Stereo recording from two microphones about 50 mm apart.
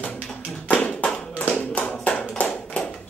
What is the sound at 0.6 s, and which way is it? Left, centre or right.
Clapping, left.